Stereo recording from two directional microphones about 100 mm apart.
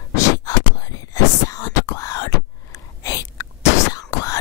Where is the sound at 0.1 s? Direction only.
35° left (ahead or behind).